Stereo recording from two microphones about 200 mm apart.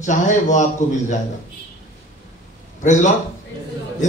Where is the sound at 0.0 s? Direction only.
35° left (ahead or behind).